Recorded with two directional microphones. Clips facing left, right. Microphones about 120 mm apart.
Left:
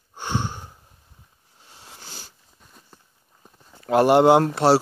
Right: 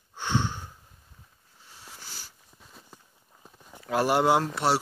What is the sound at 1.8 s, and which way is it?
Wheeze, 25° left (ahead or behind).